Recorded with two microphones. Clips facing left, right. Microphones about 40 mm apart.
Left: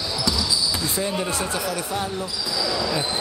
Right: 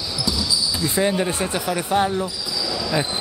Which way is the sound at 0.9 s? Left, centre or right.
Right.